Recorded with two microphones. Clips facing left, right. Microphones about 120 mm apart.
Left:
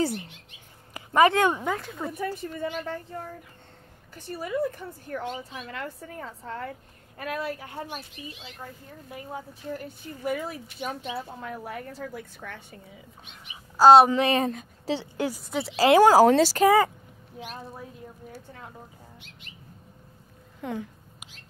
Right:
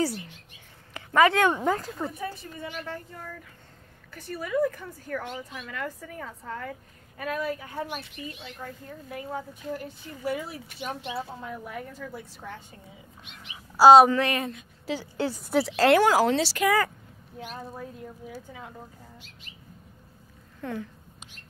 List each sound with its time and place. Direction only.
0.9 s speech: 20° left (ahead or behind)
1.6 s speech: centre (ahead or behind)
2.1 s speech: 45° left (ahead or behind)
4.1 s speech: 25° left (ahead or behind)
10.4 s speech: 45° left (ahead or behind)
13.7 s speech: 5° right (ahead or behind)
14.1 s speech: 25° left (ahead or behind)
14.4 s speech: 40° left (ahead or behind)
15.1 s speech: 15° left (ahead or behind)
16.0 s speech: 40° left (ahead or behind)
16.6 s speech: 25° left (ahead or behind)
17.6 s speech: centre (ahead or behind)
20.6 s a sound: 15° left (ahead or behind)